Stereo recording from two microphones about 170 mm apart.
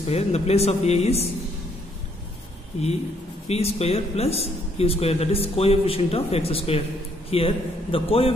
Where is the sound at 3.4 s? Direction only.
35° left (ahead or behind).